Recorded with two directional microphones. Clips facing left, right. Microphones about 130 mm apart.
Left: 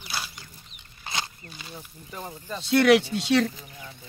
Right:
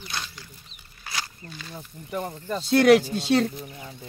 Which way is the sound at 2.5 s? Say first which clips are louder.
Right 2 dB; 35° right (ahead or behind).